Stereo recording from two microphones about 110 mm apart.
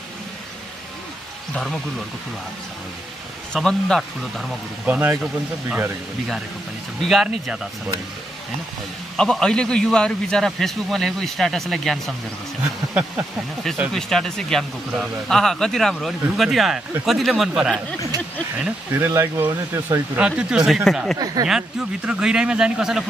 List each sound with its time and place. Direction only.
1.5 s speech: 5° left (ahead or behind)
3.5 s speech: 5° left (ahead or behind)
4.8 s speech: 15° right (ahead or behind)
7.0 s speech: centre (ahead or behind)
9.1 s speech: 5° left (ahead or behind)
13.9 s speech: 5° left (ahead or behind)
18.6 s speech: 20° right (ahead or behind)
20.2 s speech: 10° right (ahead or behind)